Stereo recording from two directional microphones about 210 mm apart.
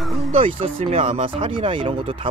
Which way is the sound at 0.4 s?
25° right (ahead or behind).